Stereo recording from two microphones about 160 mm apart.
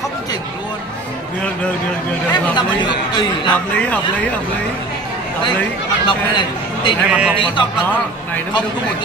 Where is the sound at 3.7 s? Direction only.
10° left (ahead or behind).